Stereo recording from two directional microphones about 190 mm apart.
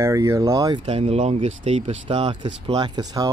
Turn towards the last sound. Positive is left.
turn(degrees=-20)  # may be behind; listen again after turning